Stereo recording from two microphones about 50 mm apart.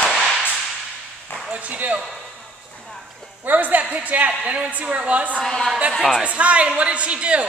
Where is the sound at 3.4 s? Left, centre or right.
Right.